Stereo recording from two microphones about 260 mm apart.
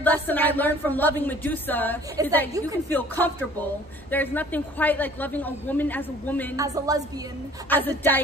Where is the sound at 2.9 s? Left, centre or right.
Centre.